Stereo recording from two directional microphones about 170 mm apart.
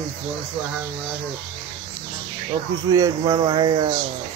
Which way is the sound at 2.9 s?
20° right (ahead or behind).